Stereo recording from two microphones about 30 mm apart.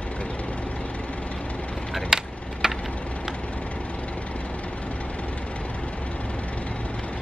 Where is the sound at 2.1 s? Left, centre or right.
Centre.